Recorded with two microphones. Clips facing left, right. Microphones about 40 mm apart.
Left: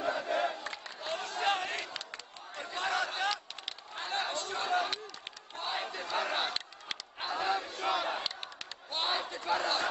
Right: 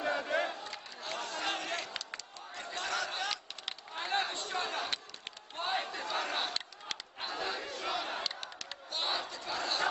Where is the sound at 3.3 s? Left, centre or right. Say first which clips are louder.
Left 4 dB; centre.